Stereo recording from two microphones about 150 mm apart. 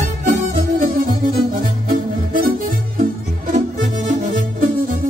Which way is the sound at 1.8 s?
70° right (ahead or behind).